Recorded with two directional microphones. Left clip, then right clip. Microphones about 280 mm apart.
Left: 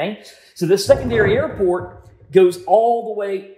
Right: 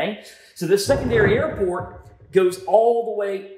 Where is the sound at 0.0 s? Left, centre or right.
Centre.